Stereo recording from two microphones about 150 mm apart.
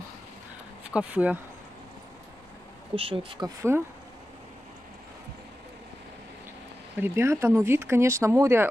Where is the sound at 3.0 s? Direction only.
35° right (ahead or behind).